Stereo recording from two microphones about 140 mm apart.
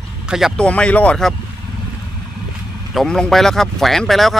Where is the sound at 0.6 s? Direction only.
10° left (ahead or behind).